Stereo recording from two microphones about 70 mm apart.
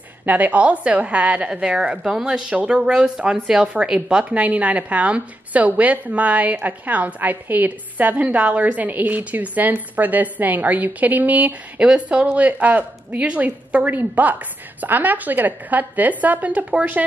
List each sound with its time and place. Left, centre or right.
0.2 s a woman's voice: right
2.8 s a woman's voice: centre